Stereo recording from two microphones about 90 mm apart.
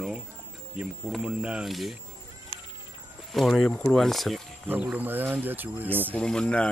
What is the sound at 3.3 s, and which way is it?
Speech, 5° left (ahead or behind).